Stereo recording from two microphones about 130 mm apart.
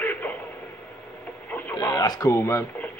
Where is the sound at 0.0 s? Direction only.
15° left (ahead or behind).